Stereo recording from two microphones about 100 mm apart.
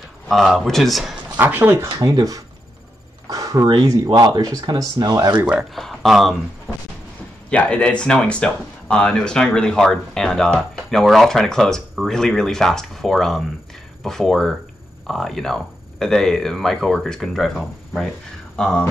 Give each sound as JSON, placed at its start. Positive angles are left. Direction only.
{"t": 0.3, "sound": "speech", "side_deg": 0}
{"t": 1.3, "sound": "speech", "side_deg": -20}
{"t": 1.9, "sound": "speech", "side_deg": -40}
{"t": 3.3, "sound": "a sound", "side_deg": -35}
{"t": 3.6, "sound": "speech", "side_deg": -45}
{"t": 5.6, "sound": "speech", "side_deg": 0}
{"t": 7.4, "sound": "speech", "side_deg": 10}
{"t": 18.6, "sound": "a sound", "side_deg": 10}